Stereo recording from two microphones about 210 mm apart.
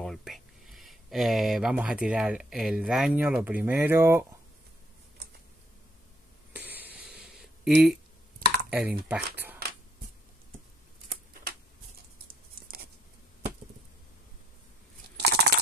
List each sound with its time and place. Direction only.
0.0 s speech: centre (ahead or behind)
6.5 s a sound: 10° right (ahead or behind)
8.6 s typing: 5° right (ahead or behind)
9.1 s speech: 10° right (ahead or behind)
15.1 s crunch: 50° right (ahead or behind)